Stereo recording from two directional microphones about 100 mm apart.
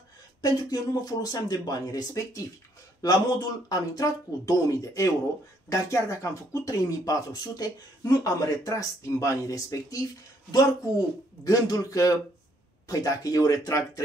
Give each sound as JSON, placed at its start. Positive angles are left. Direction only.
{"t": 0.4, "sound": "speech", "side_deg": 35}